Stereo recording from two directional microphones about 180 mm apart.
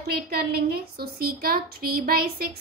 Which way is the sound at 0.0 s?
60° right (ahead or behind).